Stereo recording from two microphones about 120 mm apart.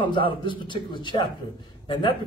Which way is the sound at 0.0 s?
45° left (ahead or behind).